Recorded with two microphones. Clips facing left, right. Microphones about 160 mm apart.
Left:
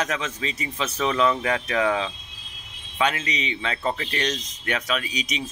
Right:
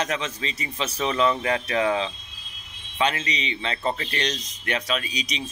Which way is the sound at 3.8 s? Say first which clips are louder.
Even; 30° right (ahead or behind).